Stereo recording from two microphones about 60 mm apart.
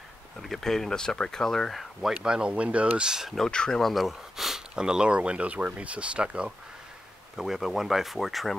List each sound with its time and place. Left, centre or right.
0.4 s speech: centre
3.3 s speech: centre
3.9 s speech: centre
7.3 s speech: centre